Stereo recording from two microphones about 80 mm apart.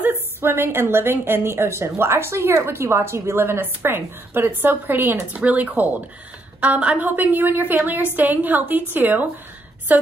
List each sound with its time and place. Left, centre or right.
0.0 s a woman's voice: right